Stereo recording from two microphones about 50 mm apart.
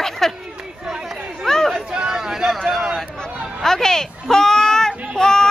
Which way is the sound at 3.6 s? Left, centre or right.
Centre.